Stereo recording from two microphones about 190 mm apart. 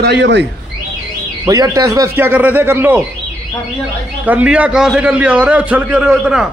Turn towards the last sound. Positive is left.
turn(degrees=-5)  # may be behind; listen again after turning